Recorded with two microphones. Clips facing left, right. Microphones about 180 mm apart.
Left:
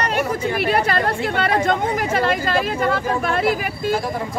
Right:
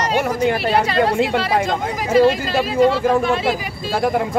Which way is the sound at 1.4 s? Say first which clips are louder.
Left 1 dB; 55° left (ahead or behind).